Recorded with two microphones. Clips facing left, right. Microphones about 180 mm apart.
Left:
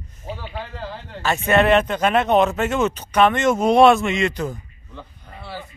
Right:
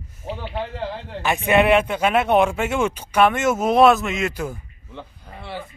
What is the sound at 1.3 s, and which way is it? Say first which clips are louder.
Speech: even; 10° right (ahead or behind).